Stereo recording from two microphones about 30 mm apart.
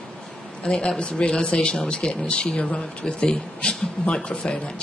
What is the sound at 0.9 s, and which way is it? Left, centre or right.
Speech, left.